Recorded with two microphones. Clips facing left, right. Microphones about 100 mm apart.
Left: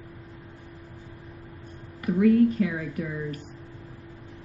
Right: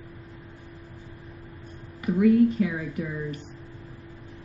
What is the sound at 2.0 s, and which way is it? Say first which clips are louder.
Speech: even; 15° right (ahead or behind).